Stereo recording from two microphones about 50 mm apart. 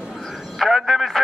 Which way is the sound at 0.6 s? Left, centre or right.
Centre.